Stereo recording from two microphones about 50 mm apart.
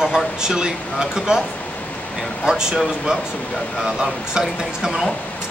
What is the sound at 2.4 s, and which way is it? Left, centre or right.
Speech, centre.